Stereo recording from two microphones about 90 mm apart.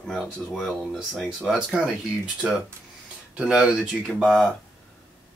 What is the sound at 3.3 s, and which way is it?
Speech, 10° right (ahead or behind).